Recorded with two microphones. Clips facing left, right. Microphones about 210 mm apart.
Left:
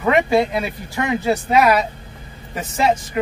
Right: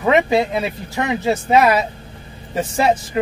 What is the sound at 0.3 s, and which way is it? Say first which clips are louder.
Speech: even; 25° right (ahead or behind).